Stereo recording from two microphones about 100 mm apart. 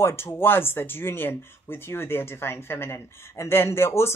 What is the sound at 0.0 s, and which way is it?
Speech, 25° left (ahead or behind).